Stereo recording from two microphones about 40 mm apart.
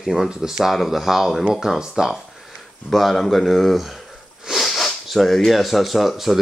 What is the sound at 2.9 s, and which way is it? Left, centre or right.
Speech, centre.